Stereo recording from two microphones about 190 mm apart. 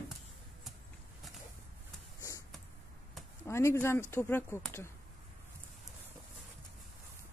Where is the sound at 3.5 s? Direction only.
15° left (ahead or behind).